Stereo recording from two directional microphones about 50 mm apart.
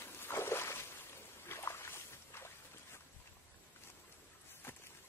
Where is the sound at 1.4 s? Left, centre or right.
Left.